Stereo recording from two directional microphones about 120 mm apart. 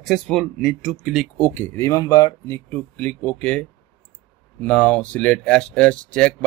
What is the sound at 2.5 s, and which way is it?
Speech, 10° left (ahead or behind).